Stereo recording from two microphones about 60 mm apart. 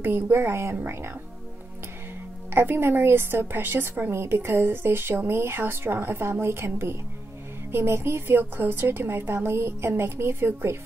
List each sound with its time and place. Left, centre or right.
0.0 s a woman's voice: right
2.5 s a woman's voice: right